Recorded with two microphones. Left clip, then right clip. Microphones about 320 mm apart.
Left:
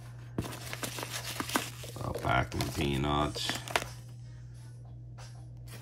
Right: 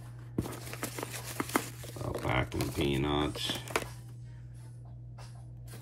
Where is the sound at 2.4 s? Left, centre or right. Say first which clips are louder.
Left 1 dB; left.